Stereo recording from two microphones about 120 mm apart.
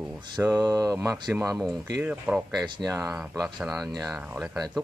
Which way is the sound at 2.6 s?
35° right (ahead or behind).